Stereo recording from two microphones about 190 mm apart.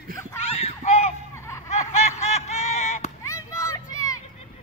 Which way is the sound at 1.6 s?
35° left (ahead or behind).